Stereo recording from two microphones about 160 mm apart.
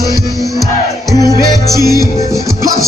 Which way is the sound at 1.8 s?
25° left (ahead or behind).